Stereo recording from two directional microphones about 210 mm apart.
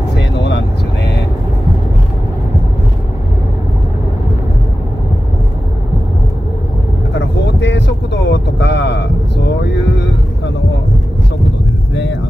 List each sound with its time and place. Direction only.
0.1 s vehicle: 55° left (ahead or behind)
7.2 s vehicle: 55° left (ahead or behind)
11.9 s hum: 60° left (ahead or behind)